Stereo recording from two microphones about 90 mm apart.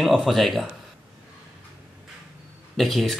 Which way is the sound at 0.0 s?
Centre (ahead or behind).